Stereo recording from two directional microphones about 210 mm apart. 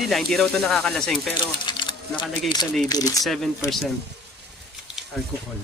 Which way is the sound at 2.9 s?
15° left (ahead or behind).